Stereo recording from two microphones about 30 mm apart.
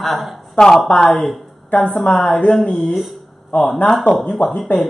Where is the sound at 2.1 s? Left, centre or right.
Left.